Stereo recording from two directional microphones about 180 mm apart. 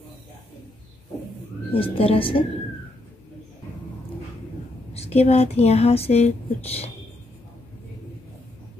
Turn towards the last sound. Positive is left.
turn(degrees=35)  # may be behind; listen again after turning